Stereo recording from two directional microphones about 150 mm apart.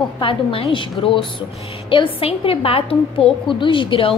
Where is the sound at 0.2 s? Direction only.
35° left (ahead or behind).